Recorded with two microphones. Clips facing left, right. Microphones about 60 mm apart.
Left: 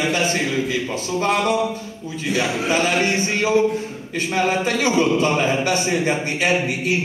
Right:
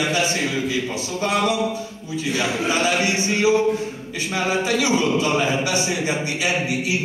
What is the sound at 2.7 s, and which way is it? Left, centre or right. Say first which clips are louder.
Speech: left 1 dB; left.